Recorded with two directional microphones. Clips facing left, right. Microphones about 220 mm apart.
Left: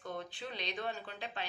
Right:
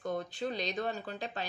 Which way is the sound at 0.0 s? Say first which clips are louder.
Right 7 dB; 40° right (ahead or behind).